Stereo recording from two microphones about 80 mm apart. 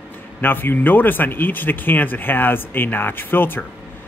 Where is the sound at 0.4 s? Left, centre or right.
Left.